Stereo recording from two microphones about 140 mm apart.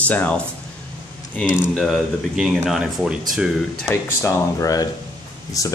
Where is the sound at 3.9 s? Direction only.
20° left (ahead or behind).